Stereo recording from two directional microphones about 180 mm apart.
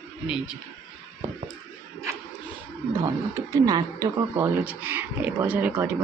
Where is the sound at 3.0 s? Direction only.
20° right (ahead or behind).